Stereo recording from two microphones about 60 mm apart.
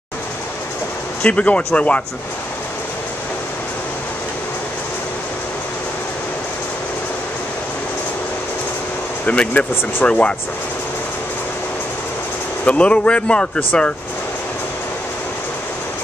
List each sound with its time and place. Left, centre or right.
1.2 s a man's voice: left
9.2 s a man's voice: left
12.6 s a man's voice: centre